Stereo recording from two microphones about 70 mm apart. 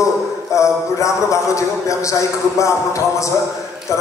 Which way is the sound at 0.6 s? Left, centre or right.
Left.